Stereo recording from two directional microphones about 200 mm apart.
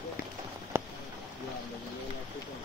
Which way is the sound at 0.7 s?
10° right (ahead or behind).